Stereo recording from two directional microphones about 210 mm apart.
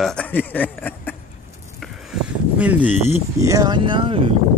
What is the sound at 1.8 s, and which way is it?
Speech, centre (ahead or behind).